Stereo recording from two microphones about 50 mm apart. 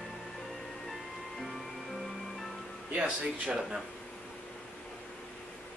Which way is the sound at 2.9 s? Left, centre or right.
Right.